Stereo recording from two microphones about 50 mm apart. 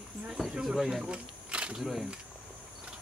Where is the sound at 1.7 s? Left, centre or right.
Centre.